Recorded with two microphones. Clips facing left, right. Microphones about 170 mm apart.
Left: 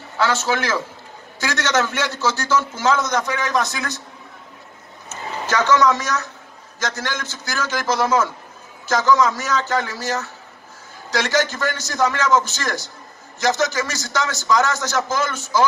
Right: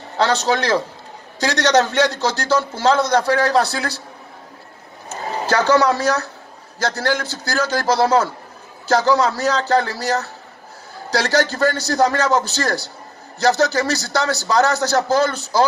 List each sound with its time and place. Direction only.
0.2 s a man's voice: 35° right (ahead or behind)
5.1 s a man's voice: 35° right (ahead or behind)